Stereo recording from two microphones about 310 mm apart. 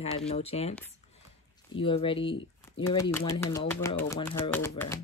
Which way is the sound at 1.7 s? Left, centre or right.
Centre.